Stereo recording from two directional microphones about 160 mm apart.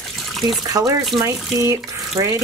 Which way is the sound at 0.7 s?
20° right (ahead or behind).